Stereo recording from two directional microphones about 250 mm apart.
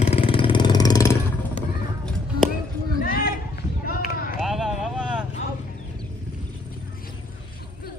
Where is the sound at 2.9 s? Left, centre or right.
Left.